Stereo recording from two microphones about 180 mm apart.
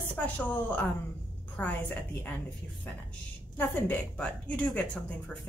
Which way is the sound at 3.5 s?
10° left (ahead or behind).